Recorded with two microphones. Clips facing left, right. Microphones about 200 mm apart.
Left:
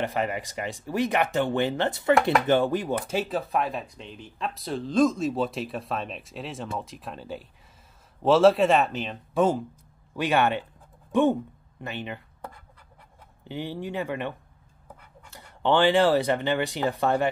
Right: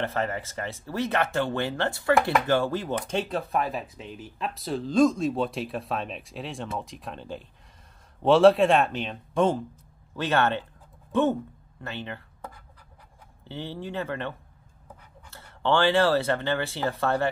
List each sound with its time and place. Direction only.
0.0 s speech: 15° left (ahead or behind)
13.5 s speech: 15° left (ahead or behind)